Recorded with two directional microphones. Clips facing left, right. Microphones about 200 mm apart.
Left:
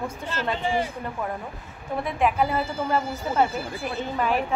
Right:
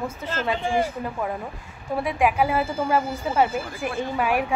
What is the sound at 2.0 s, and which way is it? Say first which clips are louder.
Speech: right 2 dB; 10° right (ahead or behind).